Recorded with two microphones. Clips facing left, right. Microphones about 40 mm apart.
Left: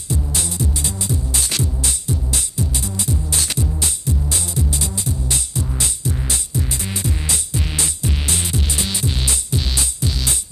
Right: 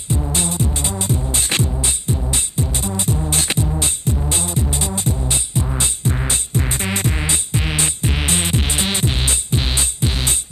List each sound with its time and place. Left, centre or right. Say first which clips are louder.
0.1 s music: right 3 dB; right